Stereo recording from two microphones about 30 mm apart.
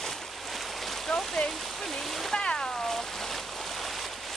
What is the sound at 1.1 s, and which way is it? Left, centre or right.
Stream, left.